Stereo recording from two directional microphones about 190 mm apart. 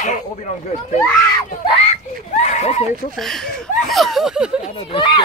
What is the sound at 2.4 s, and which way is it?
Neigh, 35° left (ahead or behind).